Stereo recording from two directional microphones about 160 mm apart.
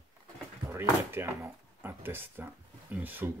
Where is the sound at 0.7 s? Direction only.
15° right (ahead or behind).